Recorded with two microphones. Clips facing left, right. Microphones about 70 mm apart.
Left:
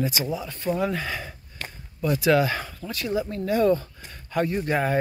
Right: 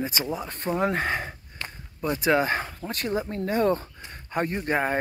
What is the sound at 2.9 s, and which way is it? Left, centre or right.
Speech, right.